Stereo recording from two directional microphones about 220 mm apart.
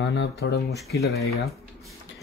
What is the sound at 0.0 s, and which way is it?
Speech, 50° left (ahead or behind).